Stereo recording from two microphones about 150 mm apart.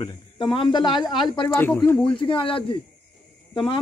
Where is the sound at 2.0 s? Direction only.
35° left (ahead or behind).